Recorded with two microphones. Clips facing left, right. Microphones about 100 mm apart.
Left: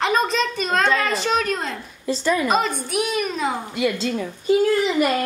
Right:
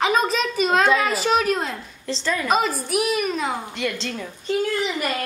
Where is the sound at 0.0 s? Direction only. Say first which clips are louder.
Even; centre (ahead or behind).